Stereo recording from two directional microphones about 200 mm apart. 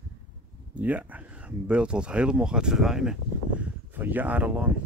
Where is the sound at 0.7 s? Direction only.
5° right (ahead or behind).